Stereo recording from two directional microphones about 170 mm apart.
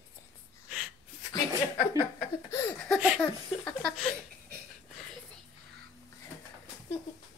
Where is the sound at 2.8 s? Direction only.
Centre (ahead or behind).